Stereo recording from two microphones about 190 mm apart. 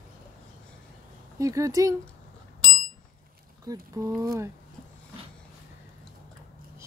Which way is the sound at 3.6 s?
20° right (ahead or behind).